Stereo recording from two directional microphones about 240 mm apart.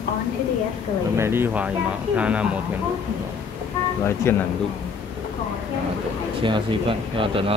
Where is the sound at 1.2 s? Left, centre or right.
Centre.